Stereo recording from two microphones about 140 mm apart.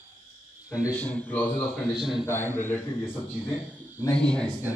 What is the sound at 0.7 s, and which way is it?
Speech, 25° left (ahead or behind).